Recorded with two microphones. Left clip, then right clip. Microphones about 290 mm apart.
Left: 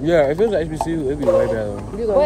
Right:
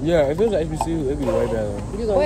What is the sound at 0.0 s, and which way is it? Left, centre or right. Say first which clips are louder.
Speech: left 3 dB; centre.